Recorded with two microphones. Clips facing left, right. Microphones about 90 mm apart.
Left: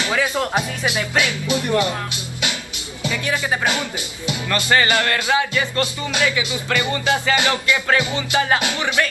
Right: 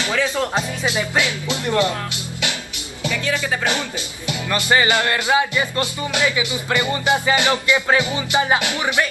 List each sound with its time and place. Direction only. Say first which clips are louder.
0.1 s speech: even; 15° left (ahead or behind)
0.9 s music: even; 20° right (ahead or behind)
1.5 s speech: even; 20° left (ahead or behind)
3.0 s speech: even; 20° left (ahead or behind)
4.5 s music: right 1 dB; 20° right (ahead or behind)